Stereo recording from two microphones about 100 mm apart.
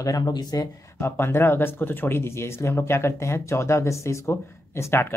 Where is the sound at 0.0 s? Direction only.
40° left (ahead or behind).